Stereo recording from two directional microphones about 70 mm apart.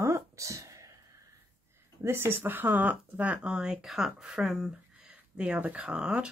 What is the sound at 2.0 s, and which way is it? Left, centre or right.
Speech, right.